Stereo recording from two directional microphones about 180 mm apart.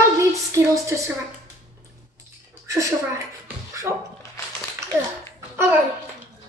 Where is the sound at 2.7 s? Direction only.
15° right (ahead or behind).